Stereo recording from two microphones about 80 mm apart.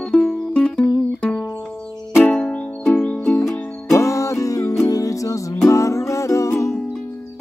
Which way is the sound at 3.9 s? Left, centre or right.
Left.